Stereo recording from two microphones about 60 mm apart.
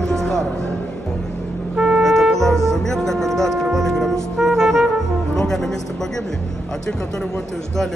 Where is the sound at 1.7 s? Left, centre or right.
Centre.